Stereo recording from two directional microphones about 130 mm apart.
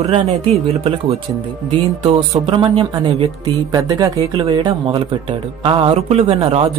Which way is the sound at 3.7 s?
25° right (ahead or behind).